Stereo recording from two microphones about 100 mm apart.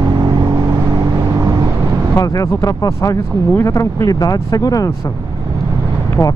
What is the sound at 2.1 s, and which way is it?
Speech, 35° left (ahead or behind).